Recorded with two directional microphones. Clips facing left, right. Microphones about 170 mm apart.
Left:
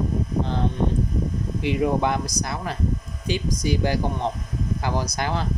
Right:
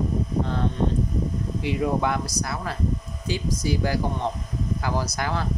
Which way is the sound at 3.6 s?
20° left (ahead or behind).